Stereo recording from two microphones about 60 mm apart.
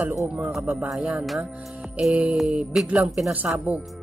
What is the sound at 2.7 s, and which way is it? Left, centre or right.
Speech, centre.